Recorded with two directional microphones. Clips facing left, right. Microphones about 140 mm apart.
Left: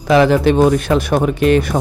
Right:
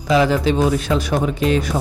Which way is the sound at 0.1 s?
65° left (ahead or behind).